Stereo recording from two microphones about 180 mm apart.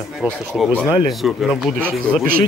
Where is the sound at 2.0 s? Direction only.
55° right (ahead or behind).